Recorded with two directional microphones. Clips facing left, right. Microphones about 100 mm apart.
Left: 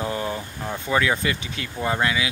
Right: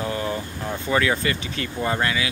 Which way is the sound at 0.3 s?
5° left (ahead or behind).